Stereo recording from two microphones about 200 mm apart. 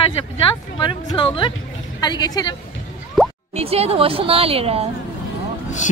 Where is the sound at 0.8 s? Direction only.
25° left (ahead or behind).